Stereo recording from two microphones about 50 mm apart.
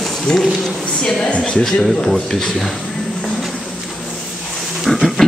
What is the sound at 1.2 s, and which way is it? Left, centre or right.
Speech, centre.